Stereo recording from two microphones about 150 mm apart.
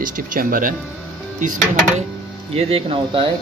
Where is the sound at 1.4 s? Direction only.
55° right (ahead or behind).